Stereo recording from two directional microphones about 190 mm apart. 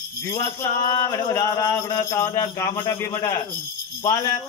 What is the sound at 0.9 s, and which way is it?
Speech, 15° left (ahead or behind).